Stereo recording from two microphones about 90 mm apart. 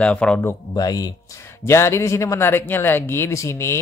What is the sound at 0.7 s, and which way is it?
Speech, 45° left (ahead or behind).